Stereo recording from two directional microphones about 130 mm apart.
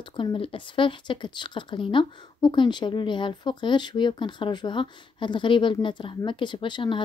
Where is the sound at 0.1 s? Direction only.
40° left (ahead or behind).